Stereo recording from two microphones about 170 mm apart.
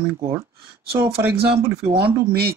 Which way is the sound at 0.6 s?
65° right (ahead or behind).